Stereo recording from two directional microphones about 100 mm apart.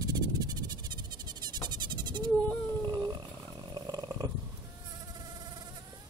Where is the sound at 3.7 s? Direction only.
40° right (ahead or behind).